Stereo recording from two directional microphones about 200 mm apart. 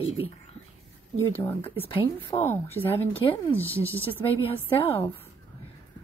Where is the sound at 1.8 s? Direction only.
25° left (ahead or behind).